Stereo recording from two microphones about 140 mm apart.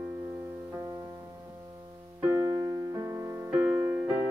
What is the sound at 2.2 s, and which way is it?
Music, 20° right (ahead or behind).